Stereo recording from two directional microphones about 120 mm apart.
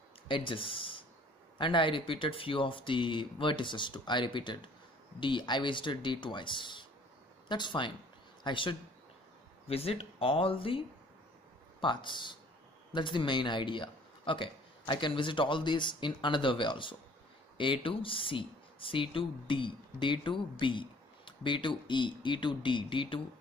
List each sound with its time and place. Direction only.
0.3 s speech: 45° left (ahead or behind)
9.7 s speech: 55° left (ahead or behind)
11.8 s speech: 40° left (ahead or behind)